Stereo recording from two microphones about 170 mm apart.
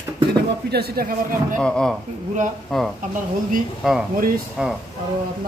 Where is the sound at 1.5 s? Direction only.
5° left (ahead or behind).